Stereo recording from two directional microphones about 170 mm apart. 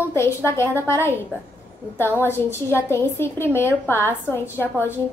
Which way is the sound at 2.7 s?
15° left (ahead or behind).